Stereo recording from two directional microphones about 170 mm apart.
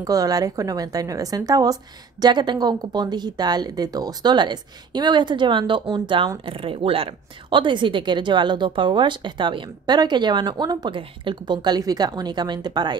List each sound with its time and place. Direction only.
0.0 s a woman's voice: 20° right (ahead or behind)